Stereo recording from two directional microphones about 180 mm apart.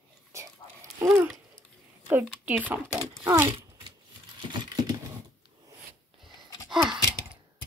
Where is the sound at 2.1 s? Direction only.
10° right (ahead or behind).